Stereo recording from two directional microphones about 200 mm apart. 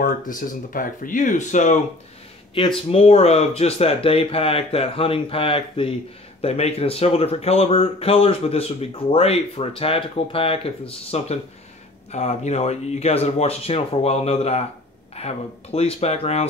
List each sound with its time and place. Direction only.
0.0 s speech: 40° left (ahead or behind)
2.9 s speech: 30° left (ahead or behind)